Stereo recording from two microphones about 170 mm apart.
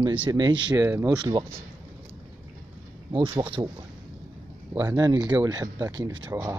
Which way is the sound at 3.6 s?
20° right (ahead or behind).